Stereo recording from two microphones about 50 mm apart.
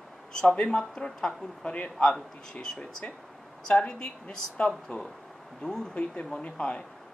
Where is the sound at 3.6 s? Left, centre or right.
Centre.